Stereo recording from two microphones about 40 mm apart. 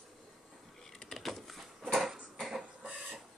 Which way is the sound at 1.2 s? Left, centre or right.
Centre.